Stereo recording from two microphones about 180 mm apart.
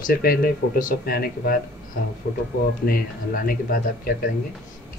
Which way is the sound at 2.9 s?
55° left (ahead or behind).